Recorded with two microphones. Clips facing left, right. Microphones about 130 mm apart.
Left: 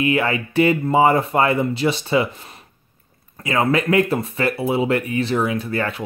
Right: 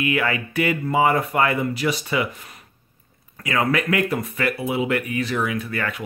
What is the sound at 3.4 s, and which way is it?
Speech, 25° left (ahead or behind).